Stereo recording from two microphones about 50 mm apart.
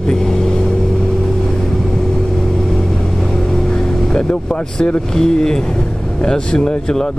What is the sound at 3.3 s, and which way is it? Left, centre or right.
Vehicle, centre.